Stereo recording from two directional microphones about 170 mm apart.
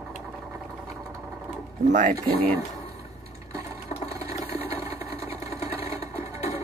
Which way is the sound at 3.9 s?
35° left (ahead or behind).